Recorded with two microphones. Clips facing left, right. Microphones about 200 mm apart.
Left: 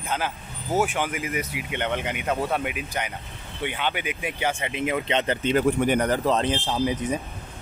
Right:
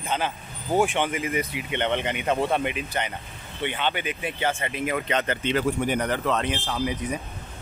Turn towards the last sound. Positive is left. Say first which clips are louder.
# left 3 dB
turn(degrees=25)  # may be behind; listen again after turning